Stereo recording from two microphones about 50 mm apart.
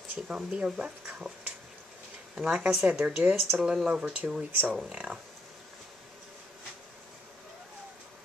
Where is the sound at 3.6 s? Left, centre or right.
Centre.